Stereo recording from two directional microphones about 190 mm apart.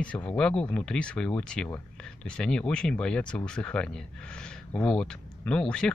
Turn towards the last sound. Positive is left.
turn(degrees=5)  # may be behind; listen again after turning